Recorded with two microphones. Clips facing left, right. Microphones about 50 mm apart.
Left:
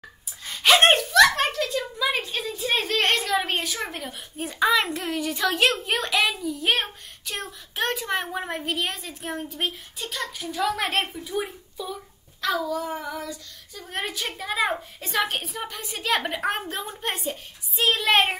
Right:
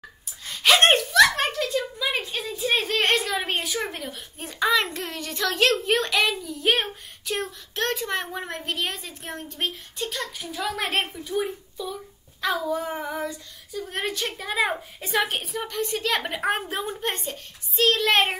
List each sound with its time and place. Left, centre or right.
0.5 s speech: centre
12.4 s speech: centre
12.7 s child singing: right
13.7 s speech: centre